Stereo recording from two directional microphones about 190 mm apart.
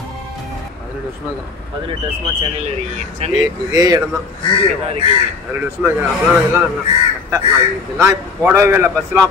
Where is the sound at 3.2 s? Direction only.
35° right (ahead or behind).